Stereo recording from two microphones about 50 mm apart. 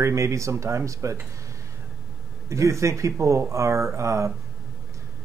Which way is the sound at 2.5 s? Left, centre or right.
Right.